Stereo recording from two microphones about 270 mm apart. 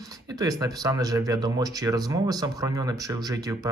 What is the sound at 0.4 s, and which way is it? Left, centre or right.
Speech, centre.